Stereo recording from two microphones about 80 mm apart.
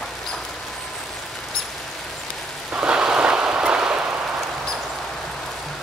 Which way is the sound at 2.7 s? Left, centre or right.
Centre.